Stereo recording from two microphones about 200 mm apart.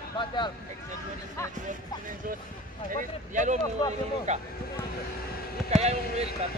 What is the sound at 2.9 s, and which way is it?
Speech, 40° right (ahead or behind).